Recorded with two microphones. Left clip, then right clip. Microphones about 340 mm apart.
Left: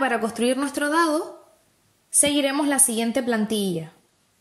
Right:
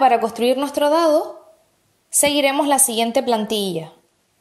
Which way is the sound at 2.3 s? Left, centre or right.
Right.